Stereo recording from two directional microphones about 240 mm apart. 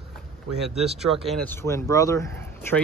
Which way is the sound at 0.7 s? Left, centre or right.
Right.